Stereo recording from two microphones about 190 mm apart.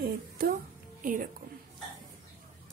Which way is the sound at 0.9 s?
45° right (ahead or behind).